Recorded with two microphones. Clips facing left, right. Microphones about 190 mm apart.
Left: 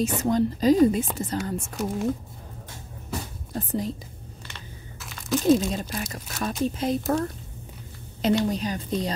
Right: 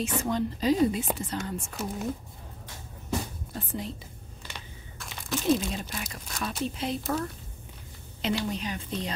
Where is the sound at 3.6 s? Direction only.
40° left (ahead or behind).